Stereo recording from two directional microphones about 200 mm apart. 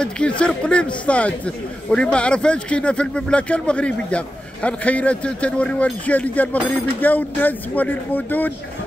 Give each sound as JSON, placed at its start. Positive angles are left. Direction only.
{"t": 0.0, "sound": "a man's voice", "side_deg": 5}